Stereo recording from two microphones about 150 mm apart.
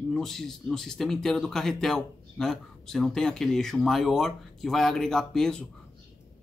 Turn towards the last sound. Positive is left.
turn(degrees=5)  # may be behind; listen again after turning